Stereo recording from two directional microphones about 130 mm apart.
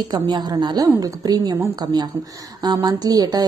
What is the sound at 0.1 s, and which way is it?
A woman's voice, 35° right (ahead or behind).